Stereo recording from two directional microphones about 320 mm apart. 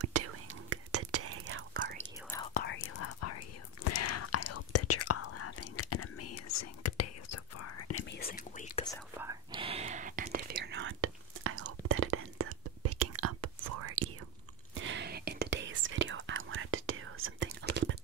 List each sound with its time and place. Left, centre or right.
0.0 s whispering: right
2.2 s whispering: centre
2.5 s whispering: left
3.0 s whispering: left
8.0 s whispering: left
9.2 s whispering: centre; by 13.9 s right
14.7 s whispering: right